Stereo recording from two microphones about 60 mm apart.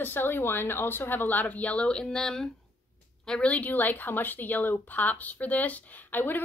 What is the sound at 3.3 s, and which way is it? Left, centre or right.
A woman's voice, centre.